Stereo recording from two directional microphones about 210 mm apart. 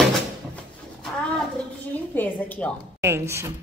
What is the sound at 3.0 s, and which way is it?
Speech, 10° right (ahead or behind).